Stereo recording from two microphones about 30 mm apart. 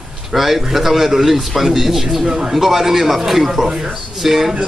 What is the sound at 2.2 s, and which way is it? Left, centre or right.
Speech, right.